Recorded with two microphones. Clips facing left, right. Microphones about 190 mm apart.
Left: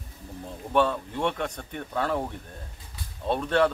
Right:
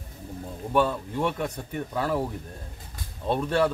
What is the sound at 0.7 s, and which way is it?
Speech, 5° right (ahead or behind).